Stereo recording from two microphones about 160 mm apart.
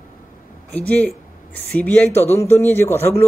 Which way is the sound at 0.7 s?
10° left (ahead or behind).